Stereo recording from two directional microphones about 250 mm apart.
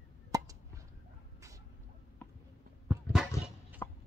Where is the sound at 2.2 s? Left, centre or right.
Centre.